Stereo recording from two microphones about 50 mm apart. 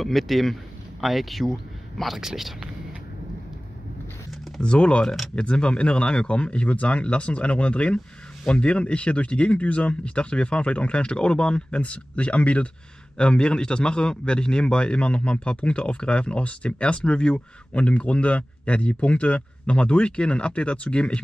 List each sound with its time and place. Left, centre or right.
0.0 s a man's voice: centre
4.6 s a man's voice: left